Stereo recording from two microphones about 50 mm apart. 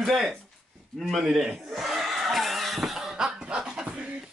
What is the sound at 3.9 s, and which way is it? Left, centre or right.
Beatboxing, right.